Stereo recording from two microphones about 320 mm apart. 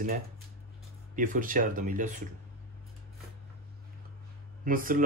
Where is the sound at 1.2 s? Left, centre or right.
Right.